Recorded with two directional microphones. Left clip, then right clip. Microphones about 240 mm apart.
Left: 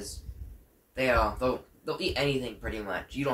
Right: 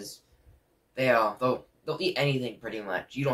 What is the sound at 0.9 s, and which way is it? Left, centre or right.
Speech, centre.